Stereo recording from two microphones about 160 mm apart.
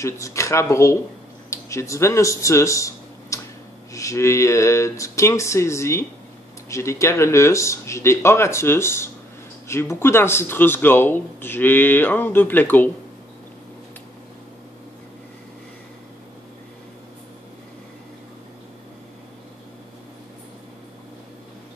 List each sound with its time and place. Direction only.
0.0 s speech: 20° left (ahead or behind)